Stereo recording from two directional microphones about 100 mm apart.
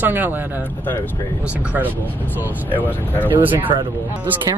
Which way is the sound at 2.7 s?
20° left (ahead or behind).